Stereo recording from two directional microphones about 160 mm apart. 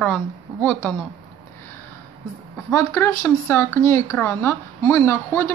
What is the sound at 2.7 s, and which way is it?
Speech, 15° left (ahead or behind).